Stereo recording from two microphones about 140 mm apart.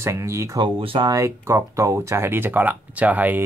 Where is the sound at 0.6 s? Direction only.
40° right (ahead or behind).